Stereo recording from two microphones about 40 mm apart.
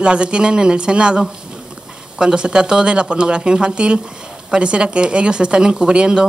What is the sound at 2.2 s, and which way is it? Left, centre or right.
A woman's voice, right.